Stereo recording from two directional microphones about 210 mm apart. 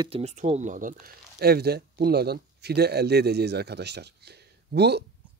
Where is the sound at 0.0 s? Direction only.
30° right (ahead or behind); by 5.0 s 50° right (ahead or behind).